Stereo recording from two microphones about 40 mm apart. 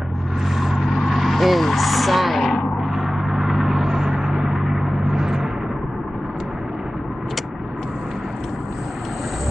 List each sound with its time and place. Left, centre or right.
0.6 s vehicle: centre
2.8 s a sound: right
3.4 s vehicle: right
3.8 s vehicle: centre
4.8 s vehicle: right
5.1 s timpani: centre